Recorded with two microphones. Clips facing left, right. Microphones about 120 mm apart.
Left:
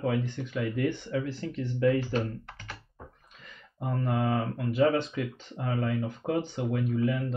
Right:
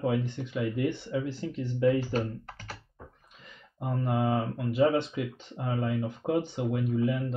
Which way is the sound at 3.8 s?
20° right (ahead or behind).